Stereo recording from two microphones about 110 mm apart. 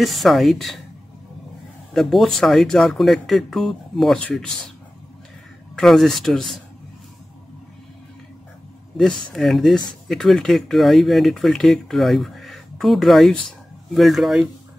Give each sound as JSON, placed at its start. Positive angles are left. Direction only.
{"t": 0.0, "sound": "speech", "side_deg": 0}
{"t": 2.0, "sound": "speech", "side_deg": 0}
{"t": 5.8, "sound": "speech", "side_deg": 5}
{"t": 9.3, "sound": "speech", "side_deg": 0}